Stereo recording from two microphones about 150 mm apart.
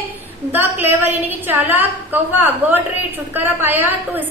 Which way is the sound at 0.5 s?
15° right (ahead or behind).